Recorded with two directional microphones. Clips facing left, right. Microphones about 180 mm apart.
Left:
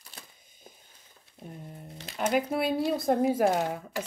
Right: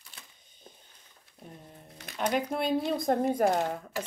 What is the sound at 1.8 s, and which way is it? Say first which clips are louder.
Crumpling: left 4 dB; 25° left (ahead or behind).